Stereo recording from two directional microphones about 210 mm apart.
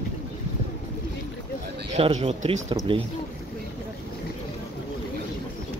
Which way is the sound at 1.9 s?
30° right (ahead or behind).